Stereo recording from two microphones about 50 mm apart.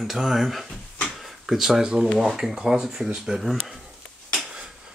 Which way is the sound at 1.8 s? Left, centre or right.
Centre.